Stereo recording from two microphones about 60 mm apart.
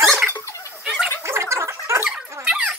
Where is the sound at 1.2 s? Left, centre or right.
Right.